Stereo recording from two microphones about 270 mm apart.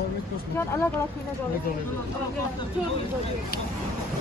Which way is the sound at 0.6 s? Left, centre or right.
Centre.